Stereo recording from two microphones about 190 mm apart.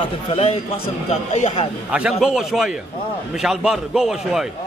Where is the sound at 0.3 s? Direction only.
30° left (ahead or behind).